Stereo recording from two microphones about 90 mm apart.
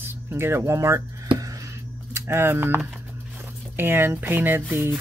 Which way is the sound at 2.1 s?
30° right (ahead or behind).